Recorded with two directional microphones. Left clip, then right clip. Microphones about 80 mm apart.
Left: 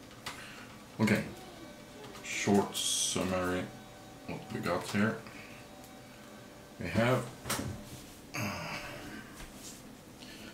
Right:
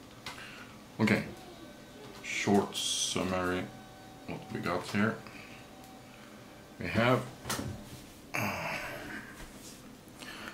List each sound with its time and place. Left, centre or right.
0.9 s speech: centre
2.2 s speech: centre
6.8 s speech: centre
8.3 s a sound: right